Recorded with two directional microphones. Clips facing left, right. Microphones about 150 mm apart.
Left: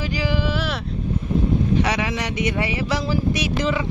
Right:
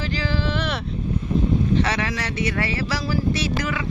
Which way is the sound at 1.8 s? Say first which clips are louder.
Left 1 dB; 15° left (ahead or behind).